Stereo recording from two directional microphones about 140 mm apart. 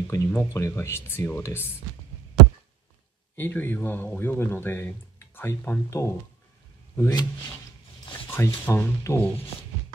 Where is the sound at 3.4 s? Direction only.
15° left (ahead or behind).